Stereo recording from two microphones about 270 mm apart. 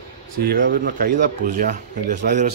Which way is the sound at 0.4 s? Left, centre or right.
Right.